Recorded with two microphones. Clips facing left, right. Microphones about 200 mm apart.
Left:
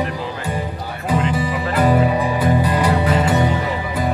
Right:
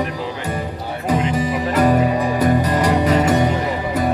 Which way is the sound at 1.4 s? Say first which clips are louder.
Right 2 dB; 40° right (ahead or behind).